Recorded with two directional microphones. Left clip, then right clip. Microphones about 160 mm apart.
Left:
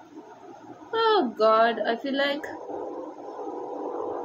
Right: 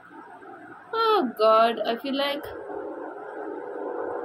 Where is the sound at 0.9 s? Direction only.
Centre (ahead or behind).